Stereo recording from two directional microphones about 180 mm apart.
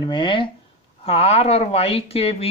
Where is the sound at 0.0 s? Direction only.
25° left (ahead or behind).